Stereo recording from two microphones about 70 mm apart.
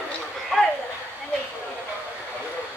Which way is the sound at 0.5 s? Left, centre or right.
Centre.